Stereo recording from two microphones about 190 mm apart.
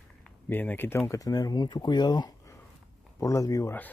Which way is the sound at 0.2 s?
10° left (ahead or behind).